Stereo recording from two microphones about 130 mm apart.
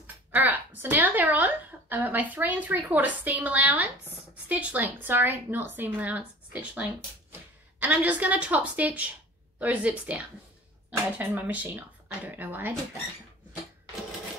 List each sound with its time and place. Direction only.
0.0 s a woman's voice: 15° right (ahead or behind)